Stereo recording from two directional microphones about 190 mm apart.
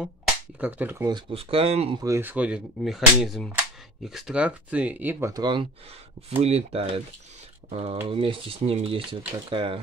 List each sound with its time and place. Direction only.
0.6 s speech: 10° right (ahead or behind)
1.0 s speech: 25° right (ahead or behind)
2.0 s speech: 10° right (ahead or behind); by 9.8 s 25° right (ahead or behind)